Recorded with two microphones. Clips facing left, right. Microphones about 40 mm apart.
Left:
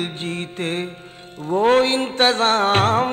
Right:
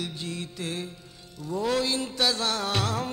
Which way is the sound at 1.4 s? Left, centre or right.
Left.